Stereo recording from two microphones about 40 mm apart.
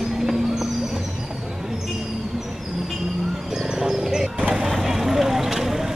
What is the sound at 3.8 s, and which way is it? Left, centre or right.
Music, centre.